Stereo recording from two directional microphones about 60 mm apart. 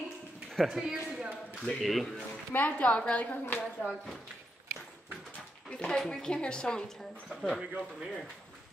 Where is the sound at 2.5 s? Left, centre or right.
Left.